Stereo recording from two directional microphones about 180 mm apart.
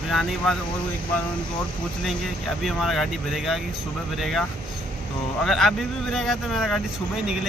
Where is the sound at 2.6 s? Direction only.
Centre (ahead or behind).